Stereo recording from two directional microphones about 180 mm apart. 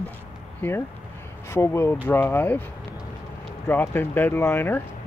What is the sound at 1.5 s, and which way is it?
Speech, 15° left (ahead or behind).